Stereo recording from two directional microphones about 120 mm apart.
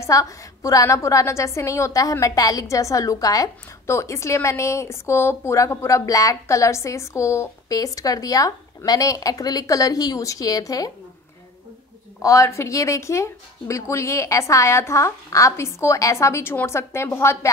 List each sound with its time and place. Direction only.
0.0 s a woman's voice: 25° left (ahead or behind)
12.2 s a woman's voice: 25° left (ahead or behind)